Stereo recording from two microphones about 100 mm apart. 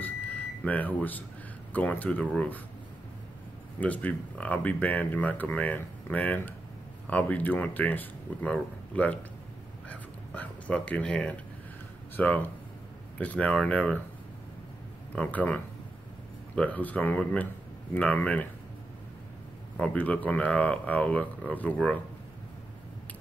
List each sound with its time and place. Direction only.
0.0 s a sound: 15° left (ahead or behind)
1.7 s speech: 15° left (ahead or behind)
3.8 s speech: 15° left (ahead or behind)
15.1 s speech: 15° left (ahead or behind)
19.8 s speech: 15° left (ahead or behind)